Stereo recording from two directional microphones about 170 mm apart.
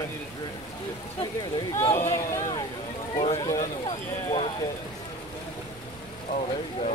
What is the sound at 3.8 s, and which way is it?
Speech, 30° left (ahead or behind).